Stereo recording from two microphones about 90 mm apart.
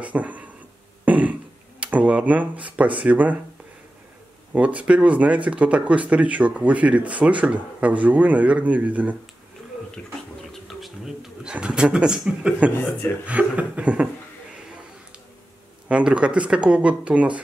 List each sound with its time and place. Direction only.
0.0 s a sound: 15° right (ahead or behind)
1.8 s speech: 15° right (ahead or behind)
4.5 s speech: 15° right (ahead or behind)
10.5 s bee: centre (ahead or behind)
11.5 s speech: 10° right (ahead or behind)
15.9 s speech: 15° right (ahead or behind)